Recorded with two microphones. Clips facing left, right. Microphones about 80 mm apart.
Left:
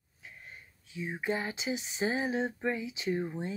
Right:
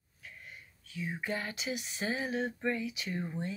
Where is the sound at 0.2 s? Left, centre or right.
Left.